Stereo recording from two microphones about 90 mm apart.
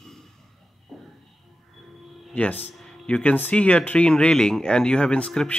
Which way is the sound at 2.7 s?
5° left (ahead or behind).